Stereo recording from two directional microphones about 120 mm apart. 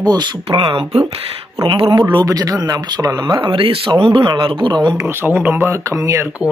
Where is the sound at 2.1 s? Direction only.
35° right (ahead or behind).